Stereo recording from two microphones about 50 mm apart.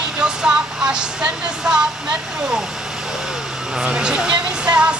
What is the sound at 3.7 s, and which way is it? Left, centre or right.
Speech, centre.